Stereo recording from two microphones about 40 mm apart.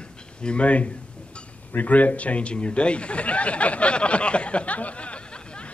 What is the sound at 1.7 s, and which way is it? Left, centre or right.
A man's voice, left.